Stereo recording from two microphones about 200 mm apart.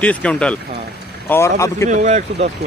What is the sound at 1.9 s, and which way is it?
Speech, 35° right (ahead or behind).